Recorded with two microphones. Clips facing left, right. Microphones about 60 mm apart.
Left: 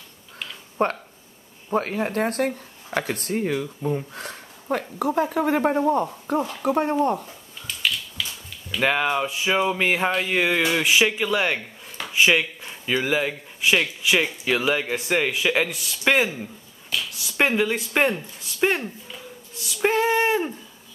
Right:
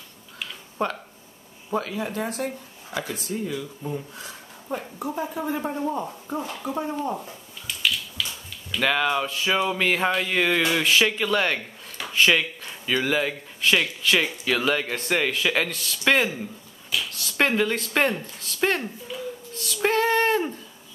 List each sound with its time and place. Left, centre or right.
0.8 s speech: left
8.8 s speech: centre
19.6 s female singing: centre